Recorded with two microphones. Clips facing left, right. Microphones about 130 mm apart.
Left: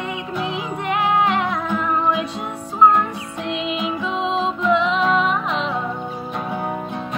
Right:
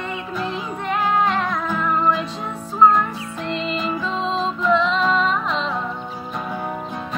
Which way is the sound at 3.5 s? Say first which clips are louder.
Left 1 dB; 15° left (ahead or behind).